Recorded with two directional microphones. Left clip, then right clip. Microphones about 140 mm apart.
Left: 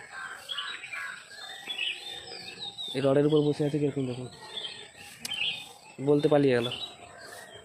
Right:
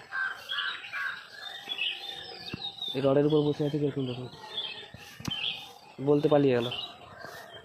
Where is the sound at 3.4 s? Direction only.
25° left (ahead or behind).